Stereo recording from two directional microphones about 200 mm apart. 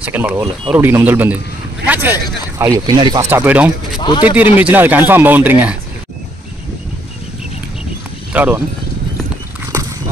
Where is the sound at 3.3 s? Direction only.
10° right (ahead or behind).